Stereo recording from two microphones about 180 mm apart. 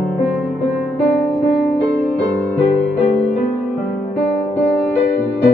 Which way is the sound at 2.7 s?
40° left (ahead or behind).